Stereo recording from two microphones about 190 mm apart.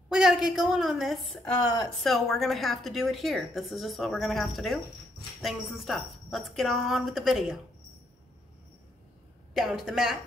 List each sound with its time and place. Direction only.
0.1 s a woman's voice: 5° right (ahead or behind)
9.5 s a woman's voice: centre (ahead or behind)